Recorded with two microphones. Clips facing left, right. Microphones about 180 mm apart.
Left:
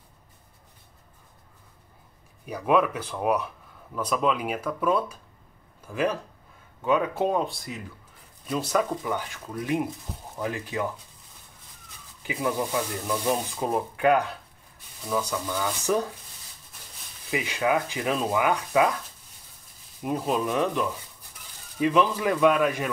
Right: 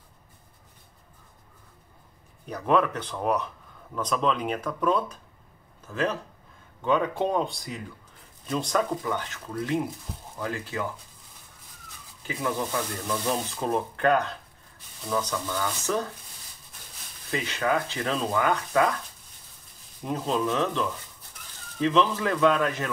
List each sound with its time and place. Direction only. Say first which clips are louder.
2.4 s speech: left 1 dB; 10° left (ahead or behind)
12.2 s speech: left 2 dB; 15° left (ahead or behind)
17.3 s speech: left 2 dB; 10° left (ahead or behind)
20.0 s speech: left 1 dB; 10° left (ahead or behind)